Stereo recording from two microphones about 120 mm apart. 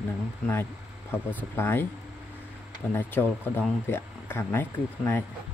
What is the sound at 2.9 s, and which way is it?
Speech, 15° left (ahead or behind).